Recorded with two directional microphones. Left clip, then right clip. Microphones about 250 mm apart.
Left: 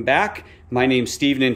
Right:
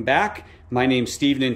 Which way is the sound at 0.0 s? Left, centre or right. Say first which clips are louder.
Left 1 dB; centre.